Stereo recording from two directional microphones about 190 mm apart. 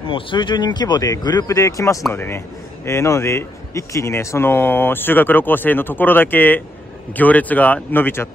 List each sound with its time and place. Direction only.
0.1 s a man's voice: 25° left (ahead or behind)